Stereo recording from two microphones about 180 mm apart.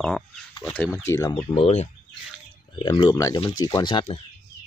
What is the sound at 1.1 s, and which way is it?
Speech, 20° left (ahead or behind).